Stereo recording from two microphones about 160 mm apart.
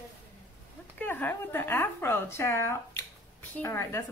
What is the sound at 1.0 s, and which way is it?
Speech, 10° left (ahead or behind).